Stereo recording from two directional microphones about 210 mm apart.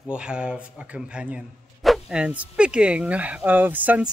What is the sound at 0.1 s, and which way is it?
Speech, 5° right (ahead or behind).